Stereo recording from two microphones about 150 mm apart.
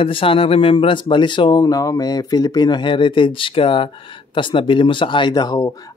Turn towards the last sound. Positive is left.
turn(degrees=25)  # may be behind; listen again after turning